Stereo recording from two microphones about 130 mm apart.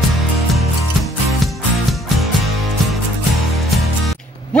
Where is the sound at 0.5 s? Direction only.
Centre (ahead or behind).